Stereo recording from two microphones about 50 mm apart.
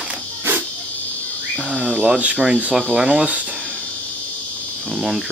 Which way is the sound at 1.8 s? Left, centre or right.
Right.